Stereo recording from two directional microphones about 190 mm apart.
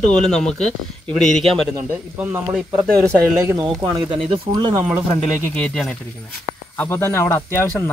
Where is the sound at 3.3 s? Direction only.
20° right (ahead or behind).